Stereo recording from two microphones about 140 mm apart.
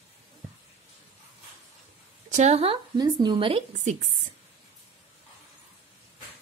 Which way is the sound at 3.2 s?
35° right (ahead or behind).